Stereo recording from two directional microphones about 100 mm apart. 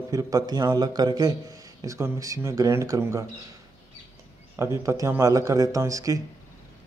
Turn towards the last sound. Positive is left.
turn(degrees=-35)  # may be behind; listen again after turning